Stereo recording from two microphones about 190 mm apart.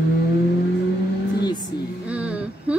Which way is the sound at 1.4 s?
20° left (ahead or behind).